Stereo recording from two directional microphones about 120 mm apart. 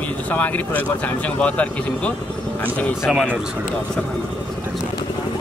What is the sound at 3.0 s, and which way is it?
Speech, 5° right (ahead or behind).